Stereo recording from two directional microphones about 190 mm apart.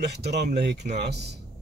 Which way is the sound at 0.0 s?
60° right (ahead or behind).